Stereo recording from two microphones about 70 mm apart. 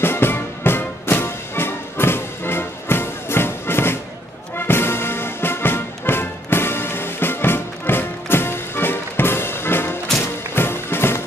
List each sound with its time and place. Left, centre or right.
0.0 s music: left